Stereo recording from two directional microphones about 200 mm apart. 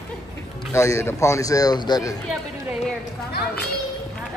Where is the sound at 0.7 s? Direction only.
15° left (ahead or behind).